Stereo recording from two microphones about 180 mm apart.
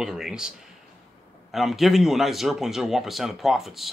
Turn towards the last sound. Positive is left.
turn(degrees=0)  # may be behind; listen again after turning